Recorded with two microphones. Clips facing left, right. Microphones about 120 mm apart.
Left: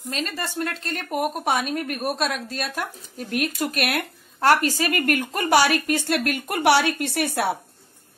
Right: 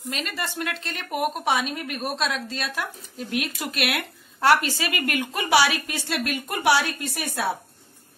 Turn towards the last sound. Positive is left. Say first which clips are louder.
# left 4 dB
turn(degrees=70)  # may be behind; listen again after turning